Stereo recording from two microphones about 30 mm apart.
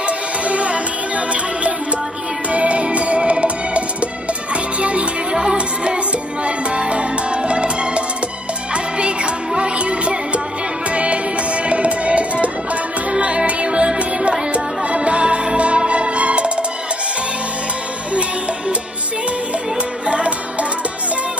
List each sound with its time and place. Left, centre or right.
0.5 s music: right
5.3 s music: right
6.4 s music: right
20.1 s music: right